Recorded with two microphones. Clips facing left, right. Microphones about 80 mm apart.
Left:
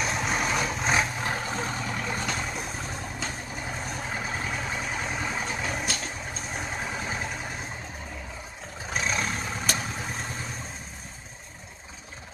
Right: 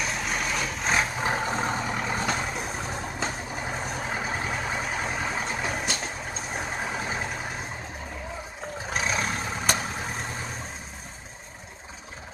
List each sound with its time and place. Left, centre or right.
0.0 s vehicle: left
1.2 s vehicle: right
2.9 s vehicle: right
8.9 s vehicle: centre